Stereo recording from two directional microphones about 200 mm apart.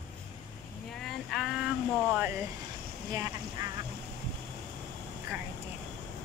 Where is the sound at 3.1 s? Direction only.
15° right (ahead or behind).